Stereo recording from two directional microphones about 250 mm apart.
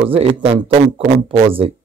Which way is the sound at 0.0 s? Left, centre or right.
Right.